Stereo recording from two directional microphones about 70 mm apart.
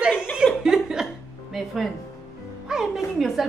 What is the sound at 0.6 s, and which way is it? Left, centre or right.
A woman's voice, centre.